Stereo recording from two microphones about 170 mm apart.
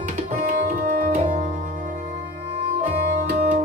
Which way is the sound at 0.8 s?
55° right (ahead or behind).